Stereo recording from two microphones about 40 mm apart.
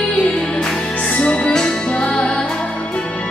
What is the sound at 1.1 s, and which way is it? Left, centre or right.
Music, left.